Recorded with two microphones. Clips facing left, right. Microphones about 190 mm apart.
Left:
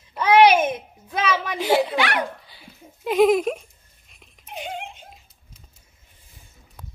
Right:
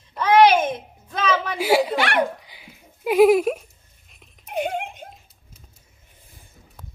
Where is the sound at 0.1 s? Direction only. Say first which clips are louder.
Even; 10° left (ahead or behind).